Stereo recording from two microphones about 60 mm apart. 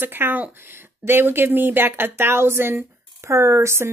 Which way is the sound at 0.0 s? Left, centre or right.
Right.